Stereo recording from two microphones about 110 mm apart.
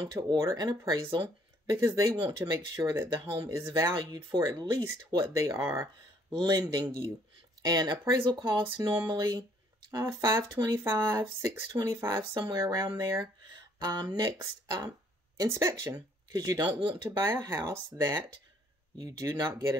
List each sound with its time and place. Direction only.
0.0 s speech: 35° right (ahead or behind)